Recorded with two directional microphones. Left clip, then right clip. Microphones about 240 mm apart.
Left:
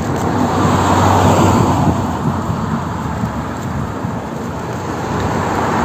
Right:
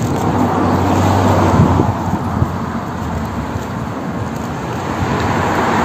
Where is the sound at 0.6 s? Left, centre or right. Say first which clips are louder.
Left 2 dB; centre; by 1.7 s left.